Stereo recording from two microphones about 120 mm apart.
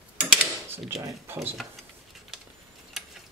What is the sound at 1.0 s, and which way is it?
Speech, 20° right (ahead or behind).